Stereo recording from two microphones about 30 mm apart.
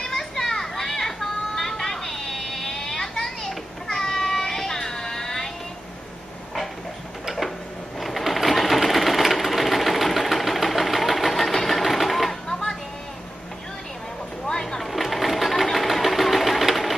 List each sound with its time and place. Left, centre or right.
0.0 s children playing: centre
8.0 s sewing machine: centre
12.4 s music: centre
14.4 s a sound: left
14.8 s sewing machine: centre